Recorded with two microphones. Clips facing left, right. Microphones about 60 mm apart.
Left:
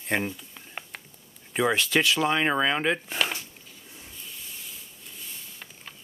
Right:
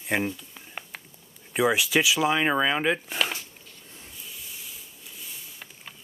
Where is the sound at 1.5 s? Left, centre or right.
Centre.